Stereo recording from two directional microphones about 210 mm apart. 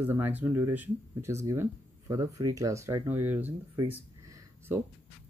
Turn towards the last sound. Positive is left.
turn(degrees=-15)  # may be behind; listen again after turning